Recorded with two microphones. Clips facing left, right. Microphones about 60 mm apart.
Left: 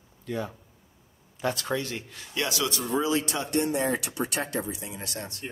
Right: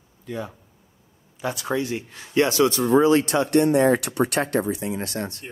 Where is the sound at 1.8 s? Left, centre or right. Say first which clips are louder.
Right 7 dB; centre; by 2.8 s right.